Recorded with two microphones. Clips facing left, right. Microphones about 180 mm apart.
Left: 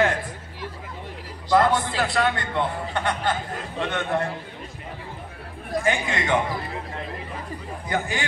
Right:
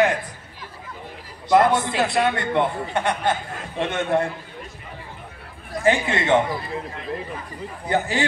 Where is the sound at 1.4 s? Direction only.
20° right (ahead or behind).